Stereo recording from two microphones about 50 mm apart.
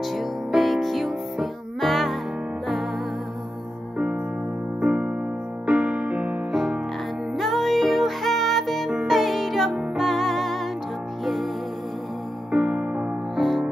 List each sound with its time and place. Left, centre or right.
0.0 s music: centre
4.8 s music: right
6.5 s music: centre
12.4 s music: right
13.4 s music: centre